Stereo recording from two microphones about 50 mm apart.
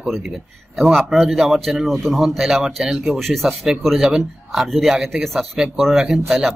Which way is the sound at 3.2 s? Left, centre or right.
Centre.